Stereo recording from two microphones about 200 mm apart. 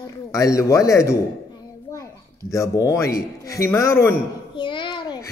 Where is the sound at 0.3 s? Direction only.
15° left (ahead or behind).